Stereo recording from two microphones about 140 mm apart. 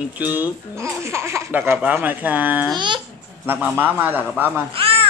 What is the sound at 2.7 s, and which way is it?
Speech, 35° right (ahead or behind).